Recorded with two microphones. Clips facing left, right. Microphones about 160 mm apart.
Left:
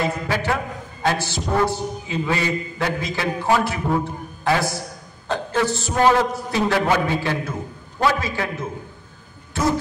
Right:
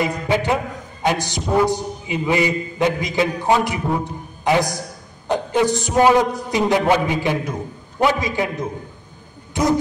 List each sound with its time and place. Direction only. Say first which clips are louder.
0.0 s a man's voice: right 3 dB; 20° right (ahead or behind)